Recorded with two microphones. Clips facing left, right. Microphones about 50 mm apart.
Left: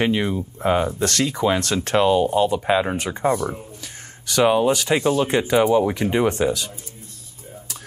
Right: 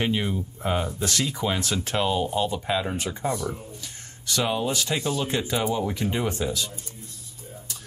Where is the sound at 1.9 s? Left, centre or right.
Left.